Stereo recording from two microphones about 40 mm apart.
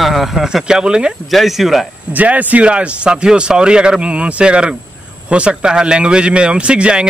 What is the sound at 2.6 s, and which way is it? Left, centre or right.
A man's voice, right.